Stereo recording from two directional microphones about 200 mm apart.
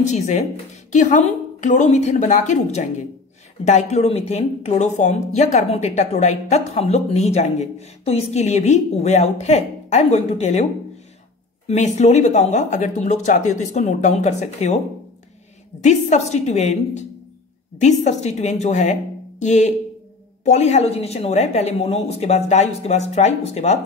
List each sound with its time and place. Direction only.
0.0 s speech: 35° left (ahead or behind)
15.8 s speech: 35° left (ahead or behind)